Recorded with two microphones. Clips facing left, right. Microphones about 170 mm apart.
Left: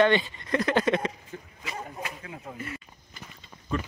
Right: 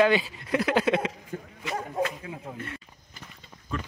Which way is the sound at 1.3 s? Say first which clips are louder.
Right 5 dB; 50° right (ahead or behind).